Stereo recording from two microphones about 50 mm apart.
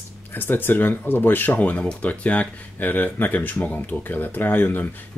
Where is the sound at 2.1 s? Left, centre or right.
Left.